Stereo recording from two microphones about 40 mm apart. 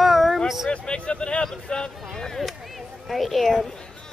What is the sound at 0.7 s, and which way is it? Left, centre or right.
Speech, left.